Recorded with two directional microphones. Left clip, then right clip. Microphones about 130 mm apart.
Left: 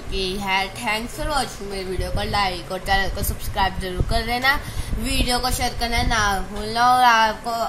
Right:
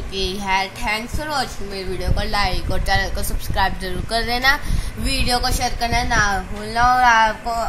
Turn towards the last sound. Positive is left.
turn(degrees=5)  # may be behind; listen again after turning